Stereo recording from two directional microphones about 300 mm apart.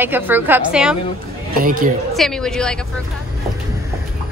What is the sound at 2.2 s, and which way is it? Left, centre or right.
Speech, centre.